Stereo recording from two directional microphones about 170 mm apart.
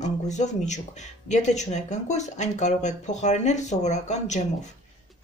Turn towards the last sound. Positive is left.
turn(degrees=45)  # may be behind; listen again after turning